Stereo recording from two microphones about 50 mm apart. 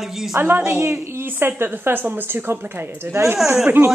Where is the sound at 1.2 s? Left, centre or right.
Right.